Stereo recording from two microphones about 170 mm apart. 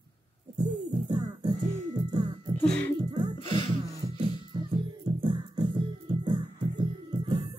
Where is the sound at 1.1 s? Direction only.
30° right (ahead or behind).